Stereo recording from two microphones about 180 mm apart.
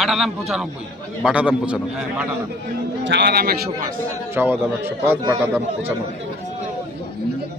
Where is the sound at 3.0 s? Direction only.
70° right (ahead or behind).